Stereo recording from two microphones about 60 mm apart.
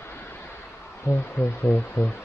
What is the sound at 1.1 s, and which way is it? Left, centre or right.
Speech, left.